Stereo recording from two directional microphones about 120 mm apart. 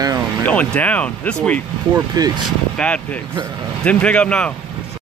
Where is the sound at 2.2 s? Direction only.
30° right (ahead or behind).